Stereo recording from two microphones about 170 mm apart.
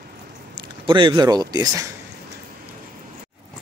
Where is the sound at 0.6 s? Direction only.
30° right (ahead or behind).